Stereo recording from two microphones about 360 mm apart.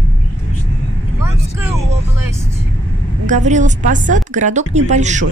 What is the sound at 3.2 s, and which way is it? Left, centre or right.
Speech, centre.